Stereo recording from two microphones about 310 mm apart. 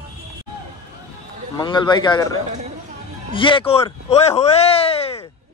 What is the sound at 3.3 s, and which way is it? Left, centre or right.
A man's voice, centre.